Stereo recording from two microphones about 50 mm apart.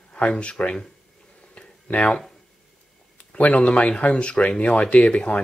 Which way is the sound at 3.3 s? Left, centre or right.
Left.